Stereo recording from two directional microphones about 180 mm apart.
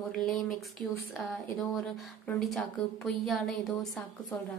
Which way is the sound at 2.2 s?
Centre (ahead or behind).